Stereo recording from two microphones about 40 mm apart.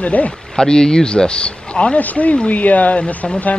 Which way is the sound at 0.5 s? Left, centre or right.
Centre.